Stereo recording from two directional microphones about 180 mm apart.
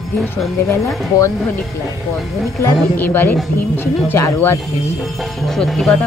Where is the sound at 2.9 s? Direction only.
10° left (ahead or behind).